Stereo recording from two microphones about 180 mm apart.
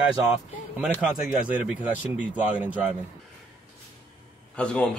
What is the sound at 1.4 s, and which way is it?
Speech, 5° right (ahead or behind).